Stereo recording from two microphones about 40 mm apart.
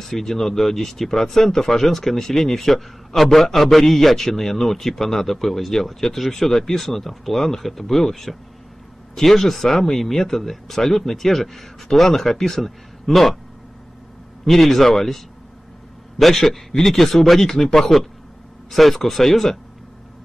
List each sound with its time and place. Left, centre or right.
0.1 s speech: centre
14.4 s speech: centre
18.7 s speech: centre